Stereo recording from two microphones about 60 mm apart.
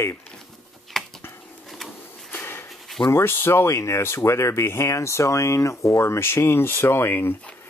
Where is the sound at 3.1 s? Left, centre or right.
Left.